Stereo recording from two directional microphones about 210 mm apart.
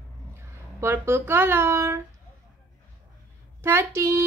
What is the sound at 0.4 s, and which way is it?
Speech, 10° right (ahead or behind).